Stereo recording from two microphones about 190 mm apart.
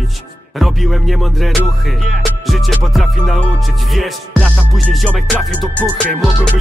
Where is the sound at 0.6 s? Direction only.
Centre (ahead or behind).